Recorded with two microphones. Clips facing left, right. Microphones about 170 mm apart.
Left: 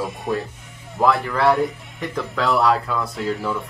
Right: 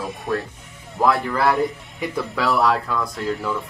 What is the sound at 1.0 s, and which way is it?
Speech, centre (ahead or behind).